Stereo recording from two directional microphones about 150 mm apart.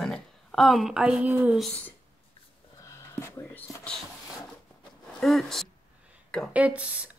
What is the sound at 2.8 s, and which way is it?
Speech, 20° left (ahead or behind).